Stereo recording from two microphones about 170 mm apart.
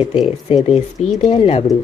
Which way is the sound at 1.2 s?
35° left (ahead or behind).